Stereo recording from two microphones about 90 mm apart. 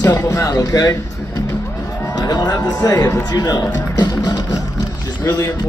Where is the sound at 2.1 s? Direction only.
45° left (ahead or behind).